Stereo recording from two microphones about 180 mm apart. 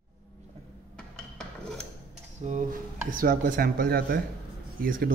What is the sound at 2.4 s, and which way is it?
Speech, 40° right (ahead or behind).